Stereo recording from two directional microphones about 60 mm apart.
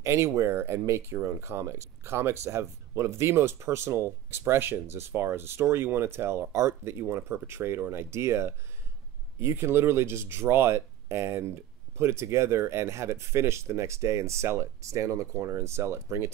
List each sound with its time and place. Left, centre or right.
0.0 s speech: right